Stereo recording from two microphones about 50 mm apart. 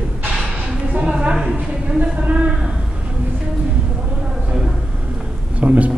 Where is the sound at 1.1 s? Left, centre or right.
Centre.